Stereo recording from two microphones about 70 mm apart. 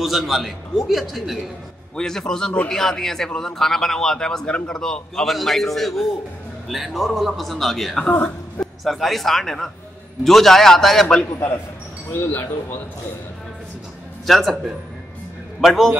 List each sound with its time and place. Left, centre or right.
0.0 s a man's voice: centre
8.0 s speech: left
8.8 s a man's voice: centre
11.3 s speech: left
14.2 s a man's voice: centre